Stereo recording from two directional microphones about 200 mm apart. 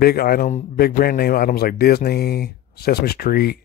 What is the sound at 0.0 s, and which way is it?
Speech, 50° left (ahead or behind).